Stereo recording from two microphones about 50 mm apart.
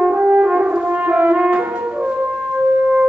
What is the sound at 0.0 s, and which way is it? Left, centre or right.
French horn, right.